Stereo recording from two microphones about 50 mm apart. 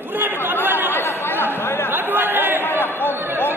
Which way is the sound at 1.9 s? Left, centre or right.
Right.